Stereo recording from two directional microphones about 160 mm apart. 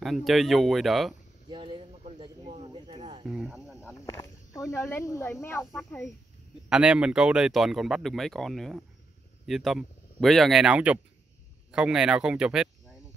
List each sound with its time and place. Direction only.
0.0 s speech: centre (ahead or behind)
1.5 s a sound: 30° right (ahead or behind)
3.3 s snake: 5° right (ahead or behind)
3.8 s snake: 20° left (ahead or behind)
6.7 s speech: 5° right (ahead or behind)